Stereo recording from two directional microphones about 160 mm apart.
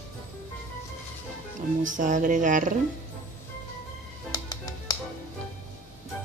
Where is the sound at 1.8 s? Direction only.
55° right (ahead or behind).